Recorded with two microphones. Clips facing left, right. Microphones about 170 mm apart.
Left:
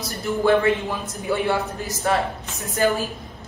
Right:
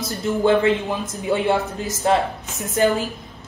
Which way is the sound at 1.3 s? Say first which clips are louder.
Right 2 dB; 20° right (ahead or behind).